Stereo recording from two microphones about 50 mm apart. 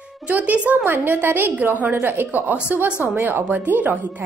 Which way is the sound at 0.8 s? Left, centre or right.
Right.